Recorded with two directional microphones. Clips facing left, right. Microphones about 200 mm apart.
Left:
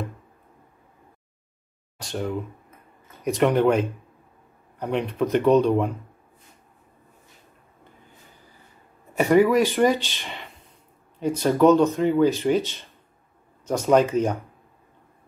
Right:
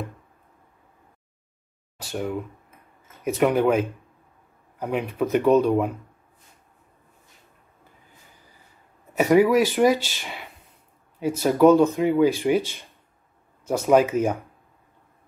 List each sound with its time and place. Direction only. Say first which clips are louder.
2.0 s speech: even; 5° right (ahead or behind)
9.1 s speech: even; 5° right (ahead or behind)